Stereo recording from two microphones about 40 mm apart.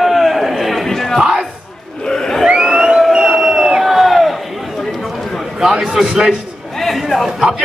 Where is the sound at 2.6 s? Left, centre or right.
Centre.